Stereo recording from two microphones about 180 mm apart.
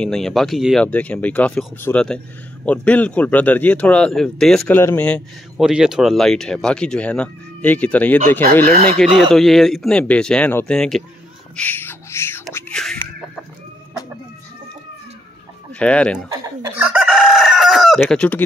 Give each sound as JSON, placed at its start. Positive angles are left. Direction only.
{"t": 0.0, "sound": "speech", "side_deg": 0}
{"t": 5.7, "sound": "speech", "side_deg": -5}
{"t": 12.5, "sound": "chicken", "side_deg": 5}
{"t": 15.8, "sound": "speech", "side_deg": 5}
{"t": 16.3, "sound": "speech", "side_deg": -20}
{"t": 16.8, "sound": "chicken", "side_deg": -5}